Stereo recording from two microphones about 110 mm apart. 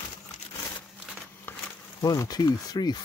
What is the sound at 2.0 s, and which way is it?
Speech, 35° left (ahead or behind).